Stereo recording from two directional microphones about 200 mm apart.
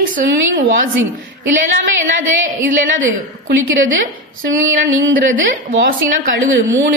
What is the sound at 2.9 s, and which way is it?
Speech, 75° right (ahead or behind).